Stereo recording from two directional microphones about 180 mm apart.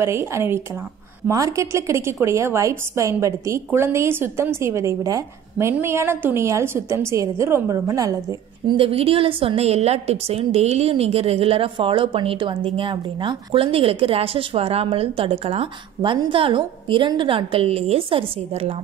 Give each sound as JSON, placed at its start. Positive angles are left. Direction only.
{"t": 0.0, "sound": "a woman's voice", "side_deg": -15}
{"t": 8.6, "sound": "a woman's voice", "side_deg": -30}